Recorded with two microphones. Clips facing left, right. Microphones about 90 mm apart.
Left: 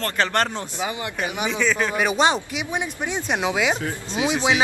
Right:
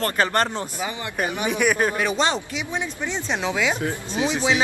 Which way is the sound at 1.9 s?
15° left (ahead or behind).